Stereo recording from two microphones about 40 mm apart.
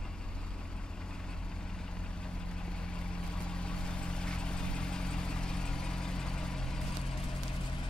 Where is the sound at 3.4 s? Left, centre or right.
Left.